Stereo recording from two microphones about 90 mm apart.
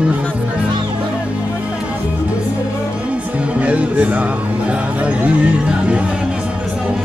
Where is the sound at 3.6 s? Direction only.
15° right (ahead or behind).